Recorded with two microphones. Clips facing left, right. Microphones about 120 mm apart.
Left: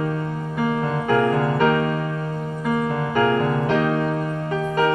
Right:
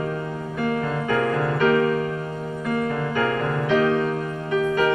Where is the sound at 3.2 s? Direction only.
35° left (ahead or behind).